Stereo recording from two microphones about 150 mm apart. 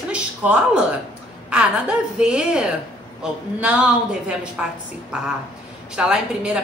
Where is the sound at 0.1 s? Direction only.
10° right (ahead or behind).